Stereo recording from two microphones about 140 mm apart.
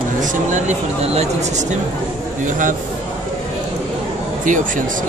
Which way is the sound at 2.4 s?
70° right (ahead or behind).